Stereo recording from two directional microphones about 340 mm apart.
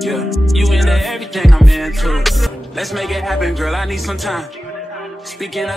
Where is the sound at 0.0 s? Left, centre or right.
Centre.